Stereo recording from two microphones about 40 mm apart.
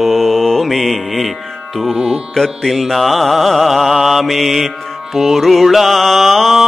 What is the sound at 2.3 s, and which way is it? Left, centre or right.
Music, centre.